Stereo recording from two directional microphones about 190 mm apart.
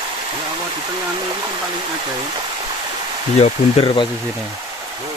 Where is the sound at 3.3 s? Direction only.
30° left (ahead or behind).